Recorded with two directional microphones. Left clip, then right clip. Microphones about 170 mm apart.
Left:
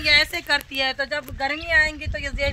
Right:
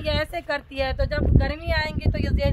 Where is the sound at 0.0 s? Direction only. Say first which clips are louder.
Left 8 dB; 65° right (ahead or behind).